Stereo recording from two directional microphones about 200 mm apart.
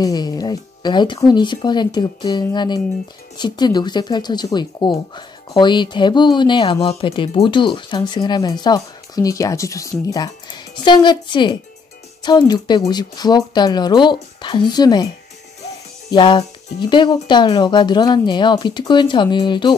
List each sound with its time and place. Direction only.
0.0 s speech: 20° left (ahead or behind)
16.1 s speech: 25° left (ahead or behind)